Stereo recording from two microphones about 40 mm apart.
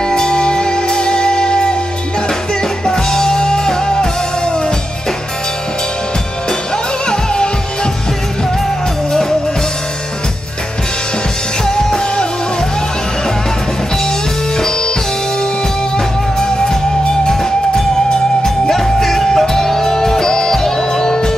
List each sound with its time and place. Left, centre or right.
0.0 s music: centre
2.8 s music: centre
7.1 s music: centre
11.6 s music: centre
16.3 s music: centre